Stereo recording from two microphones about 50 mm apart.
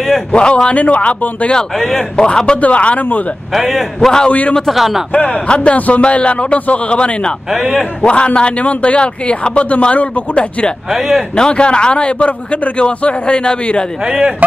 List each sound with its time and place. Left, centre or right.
0.3 s a man's voice: left
1.5 s a man's voice: centre
2.1 s a man's voice: centre
3.5 s a man's voice: centre
4.3 s a man's voice: left
4.6 s a man's voice: centre
5.1 s a man's voice: left
10.9 s a man's voice: centre
11.3 s a man's voice: centre
14.0 s a man's voice: centre